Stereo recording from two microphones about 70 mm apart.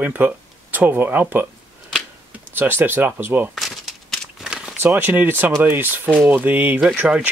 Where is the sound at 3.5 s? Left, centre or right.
Centre.